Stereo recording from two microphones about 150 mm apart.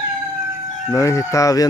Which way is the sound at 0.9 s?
20° left (ahead or behind).